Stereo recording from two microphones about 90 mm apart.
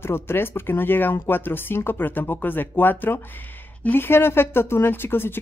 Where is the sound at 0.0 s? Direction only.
25° left (ahead or behind).